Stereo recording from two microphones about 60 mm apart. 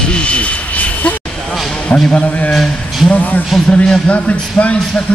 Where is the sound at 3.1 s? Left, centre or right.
Left.